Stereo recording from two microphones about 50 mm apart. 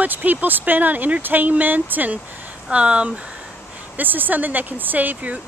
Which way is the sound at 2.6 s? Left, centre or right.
Right.